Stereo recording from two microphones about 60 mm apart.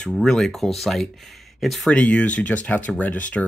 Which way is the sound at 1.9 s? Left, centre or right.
Left.